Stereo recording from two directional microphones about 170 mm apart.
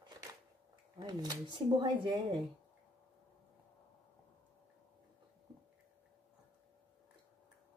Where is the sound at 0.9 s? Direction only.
25° right (ahead or behind).